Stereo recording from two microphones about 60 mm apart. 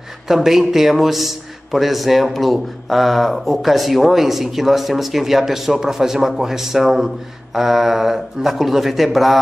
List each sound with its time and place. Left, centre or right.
0.3 s a man's voice: centre